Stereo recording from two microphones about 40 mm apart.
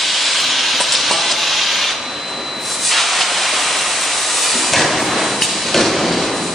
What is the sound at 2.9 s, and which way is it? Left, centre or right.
Steam, centre.